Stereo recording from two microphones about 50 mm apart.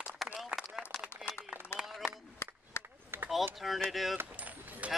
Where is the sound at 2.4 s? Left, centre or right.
Left.